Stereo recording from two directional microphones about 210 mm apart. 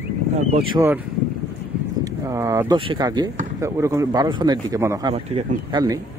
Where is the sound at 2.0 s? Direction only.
15° right (ahead or behind).